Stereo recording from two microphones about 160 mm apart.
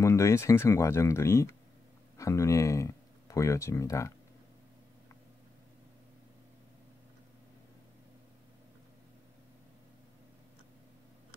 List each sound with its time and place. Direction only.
0.0 s speech: 20° left (ahead or behind)